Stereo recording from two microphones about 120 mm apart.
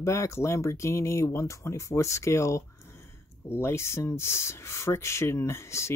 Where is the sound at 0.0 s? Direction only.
25° left (ahead or behind).